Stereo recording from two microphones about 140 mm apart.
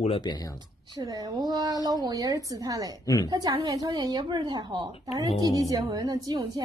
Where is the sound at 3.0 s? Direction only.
30° left (ahead or behind).